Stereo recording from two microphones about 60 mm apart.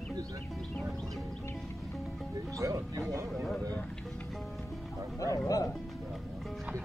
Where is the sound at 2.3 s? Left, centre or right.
Right.